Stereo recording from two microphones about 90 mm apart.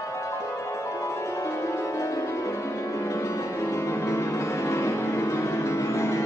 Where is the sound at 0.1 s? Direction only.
35° left (ahead or behind).